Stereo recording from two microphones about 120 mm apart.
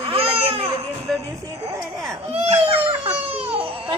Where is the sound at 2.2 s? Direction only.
65° right (ahead or behind).